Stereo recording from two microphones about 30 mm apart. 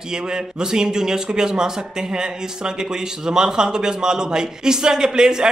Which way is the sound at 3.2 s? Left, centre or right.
Right.